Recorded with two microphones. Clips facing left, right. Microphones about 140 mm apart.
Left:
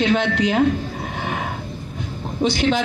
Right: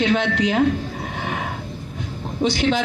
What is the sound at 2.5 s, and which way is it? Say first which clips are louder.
Speech: left 1 dB; 50° left (ahead or behind).